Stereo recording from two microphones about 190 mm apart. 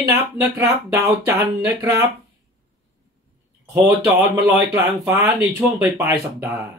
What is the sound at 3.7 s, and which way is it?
Speech, 10° right (ahead or behind).